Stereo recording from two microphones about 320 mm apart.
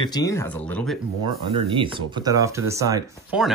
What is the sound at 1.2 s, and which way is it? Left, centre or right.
Speech, centre.